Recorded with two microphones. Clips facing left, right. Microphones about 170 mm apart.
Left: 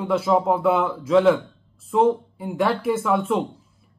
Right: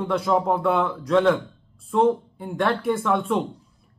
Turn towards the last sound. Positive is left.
turn(degrees=0)  # may be behind; listen again after turning